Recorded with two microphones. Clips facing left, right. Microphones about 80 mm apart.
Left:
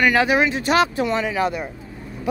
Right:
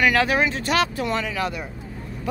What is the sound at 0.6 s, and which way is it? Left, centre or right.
Speech, left.